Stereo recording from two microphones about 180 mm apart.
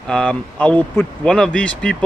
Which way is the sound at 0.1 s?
5° left (ahead or behind).